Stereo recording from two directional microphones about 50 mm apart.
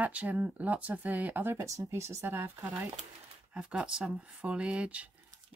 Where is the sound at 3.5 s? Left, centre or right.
Right.